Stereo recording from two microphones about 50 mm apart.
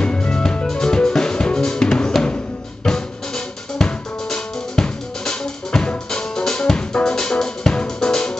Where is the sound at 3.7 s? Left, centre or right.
Centre.